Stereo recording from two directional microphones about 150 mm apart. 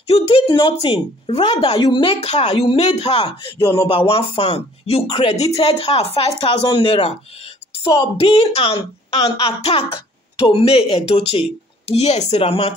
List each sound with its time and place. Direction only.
0.0 s speech: 40° left (ahead or behind)
8.2 s speech: 40° left (ahead or behind)